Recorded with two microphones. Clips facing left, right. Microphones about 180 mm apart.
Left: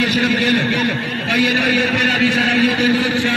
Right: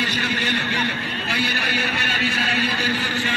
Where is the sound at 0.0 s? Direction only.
75° left (ahead or behind).